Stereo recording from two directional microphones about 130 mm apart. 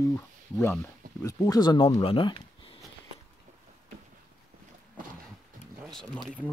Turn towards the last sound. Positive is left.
turn(degrees=0)  # may be behind; listen again after turning